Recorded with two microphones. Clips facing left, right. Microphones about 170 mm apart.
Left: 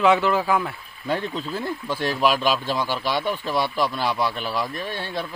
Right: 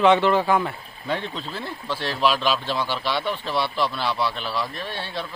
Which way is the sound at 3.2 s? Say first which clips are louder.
Left 2 dB; 45° left (ahead or behind).